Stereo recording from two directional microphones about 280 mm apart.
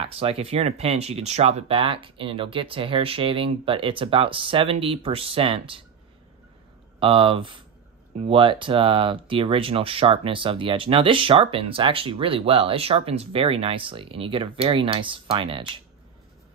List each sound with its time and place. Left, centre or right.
0.0 s speech: right
7.0 s speech: centre